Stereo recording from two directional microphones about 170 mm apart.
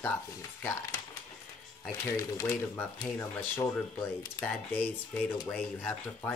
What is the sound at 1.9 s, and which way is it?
Speech, 20° left (ahead or behind).